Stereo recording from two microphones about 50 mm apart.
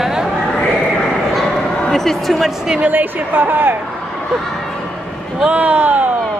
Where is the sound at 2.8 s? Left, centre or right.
Right.